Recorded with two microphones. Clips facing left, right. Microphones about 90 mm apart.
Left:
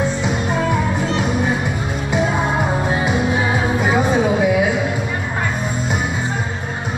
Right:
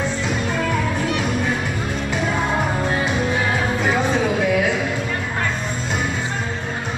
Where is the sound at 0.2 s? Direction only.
20° left (ahead or behind).